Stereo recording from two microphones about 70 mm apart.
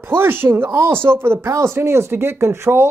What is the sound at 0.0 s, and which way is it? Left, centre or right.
Speech, right.